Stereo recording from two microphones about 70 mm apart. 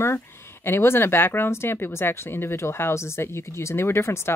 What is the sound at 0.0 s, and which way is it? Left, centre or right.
Speech, left.